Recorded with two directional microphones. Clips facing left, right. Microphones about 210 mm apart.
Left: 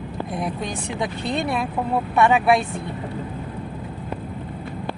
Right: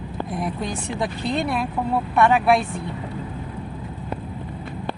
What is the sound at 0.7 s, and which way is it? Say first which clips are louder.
Speech: even; centre (ahead or behind).